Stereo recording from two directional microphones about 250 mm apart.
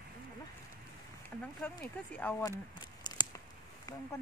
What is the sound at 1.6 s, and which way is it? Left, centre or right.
Speech, centre.